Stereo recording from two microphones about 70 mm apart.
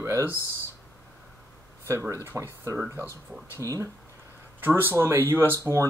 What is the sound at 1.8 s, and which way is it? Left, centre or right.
Speech, right.